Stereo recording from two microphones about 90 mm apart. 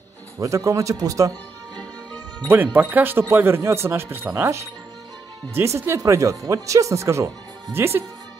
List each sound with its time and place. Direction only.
0.4 s speech: 35° right (ahead or behind)
2.5 s speech: 20° right (ahead or behind)